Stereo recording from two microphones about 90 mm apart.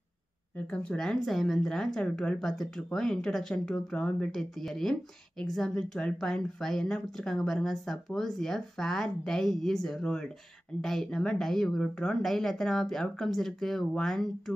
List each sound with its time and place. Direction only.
0.6 s speech: 15° left (ahead or behind)